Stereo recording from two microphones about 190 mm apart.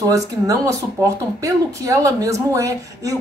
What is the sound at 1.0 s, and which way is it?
Speech, 15° right (ahead or behind).